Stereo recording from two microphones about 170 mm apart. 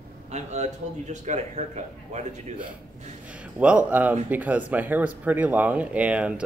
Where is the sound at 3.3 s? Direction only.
5° right (ahead or behind).